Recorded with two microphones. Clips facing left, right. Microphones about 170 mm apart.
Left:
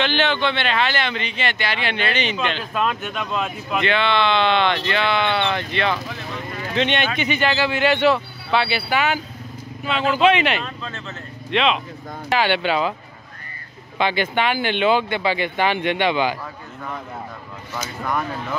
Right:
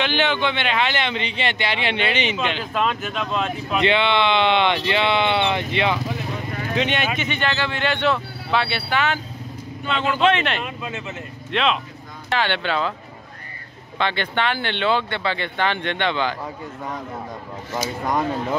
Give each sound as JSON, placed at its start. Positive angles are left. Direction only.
{"t": 0.0, "sound": "speech", "side_deg": -10}
{"t": 2.3, "sound": "speech", "side_deg": -5}
{"t": 3.8, "sound": "speech", "side_deg": -20}
{"t": 6.7, "sound": "speech", "side_deg": -5}
{"t": 10.6, "sound": "speech", "side_deg": -15}
{"t": 11.5, "sound": "speech", "side_deg": 0}
{"t": 13.9, "sound": "speech", "side_deg": 10}
{"t": 18.0, "sound": "speech", "side_deg": -20}